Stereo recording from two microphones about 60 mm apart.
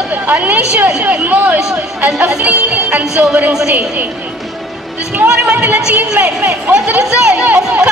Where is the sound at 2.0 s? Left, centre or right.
Centre.